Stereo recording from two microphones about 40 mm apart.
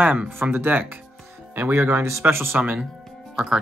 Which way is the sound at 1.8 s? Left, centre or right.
Right.